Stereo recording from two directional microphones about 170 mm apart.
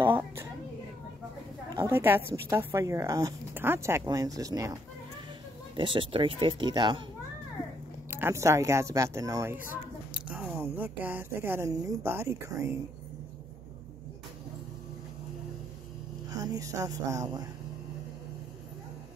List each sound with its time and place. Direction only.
0.0 s a sound: 15° right (ahead or behind)
1.8 s speech: 15° right (ahead or behind)
5.8 s speech: 30° right (ahead or behind)
8.1 s speech: 15° right (ahead or behind)
10.2 s a sound: 10° right (ahead or behind)
11.3 s speech: 15° right (ahead or behind)
16.3 s speech: 20° right (ahead or behind)